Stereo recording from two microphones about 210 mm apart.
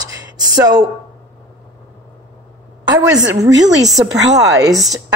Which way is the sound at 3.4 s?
15° right (ahead or behind).